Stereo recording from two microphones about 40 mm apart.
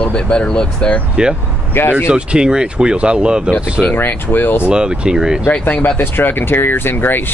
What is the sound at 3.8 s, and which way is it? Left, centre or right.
Speech, left.